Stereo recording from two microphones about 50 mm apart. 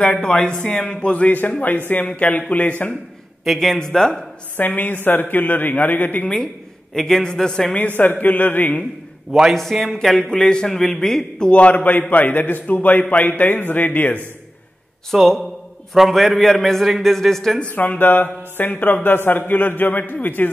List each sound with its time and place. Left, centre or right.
0.0 s a man's voice: centre
3.5 s speech: centre
4.6 s speech: left
6.2 s a sound: centre
7.0 s speech: centre
7.7 s speech: left
9.5 s a man's voice: centre
10.3 s a man's voice: centre; by 14.2 s left
15.0 s a man's voice: centre
17.6 s speech: left